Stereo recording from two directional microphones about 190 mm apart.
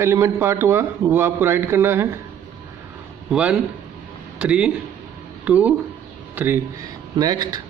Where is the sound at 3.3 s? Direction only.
5° right (ahead or behind).